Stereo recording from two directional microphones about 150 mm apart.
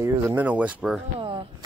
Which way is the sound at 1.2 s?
35° right (ahead or behind).